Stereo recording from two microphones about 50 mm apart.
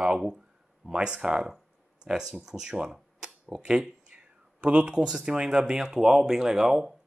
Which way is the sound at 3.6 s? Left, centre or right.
Centre.